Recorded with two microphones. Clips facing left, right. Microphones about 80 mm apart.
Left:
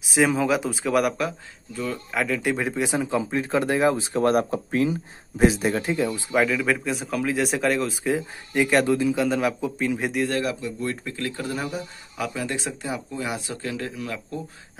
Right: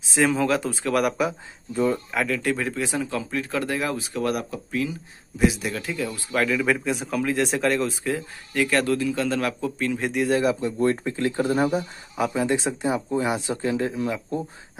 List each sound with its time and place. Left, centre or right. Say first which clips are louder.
0.1 s speech: even; centre
2.3 s speech: left 1 dB; centre
6.3 s speech: even; centre
8.0 s speech: left 2 dB; centre
10.3 s speech: right 4 dB; right
10.6 s speech: right 7 dB; right
11.5 s speech: right 7 dB; right
12.2 s speech: right 5 dB; right